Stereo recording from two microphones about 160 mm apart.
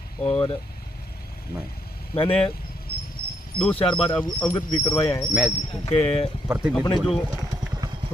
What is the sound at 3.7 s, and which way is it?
Speech, 35° left (ahead or behind).